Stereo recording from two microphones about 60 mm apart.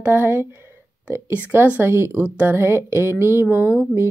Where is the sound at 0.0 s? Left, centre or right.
Right.